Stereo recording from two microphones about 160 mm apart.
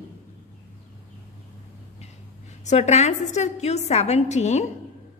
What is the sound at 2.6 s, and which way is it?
A woman's voice, 45° left (ahead or behind).